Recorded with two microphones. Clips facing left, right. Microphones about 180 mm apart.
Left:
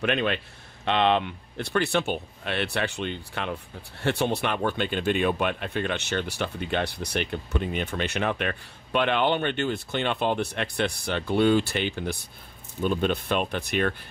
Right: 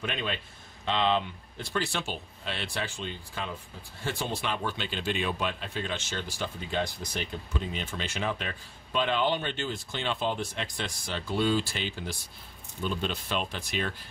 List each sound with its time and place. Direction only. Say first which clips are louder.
0.0 s speech: left 8 dB; 65° left (ahead or behind)